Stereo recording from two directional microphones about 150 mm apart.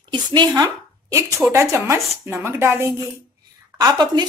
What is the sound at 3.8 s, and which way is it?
Speech, 30° right (ahead or behind).